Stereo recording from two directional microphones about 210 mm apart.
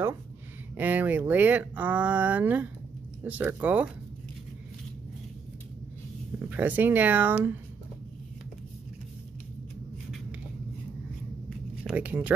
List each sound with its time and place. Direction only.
0.7 s speech: 10° right (ahead or behind)
6.5 s speech: 10° right (ahead or behind)
11.8 s speech: 10° right (ahead or behind)